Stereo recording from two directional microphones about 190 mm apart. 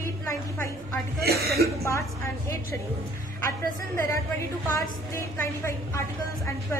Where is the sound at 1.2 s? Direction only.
55° right (ahead or behind).